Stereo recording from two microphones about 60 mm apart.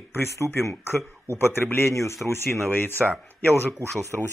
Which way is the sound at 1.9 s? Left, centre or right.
Left.